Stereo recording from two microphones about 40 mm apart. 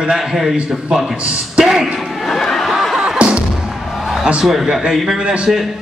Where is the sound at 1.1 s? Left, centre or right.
Right.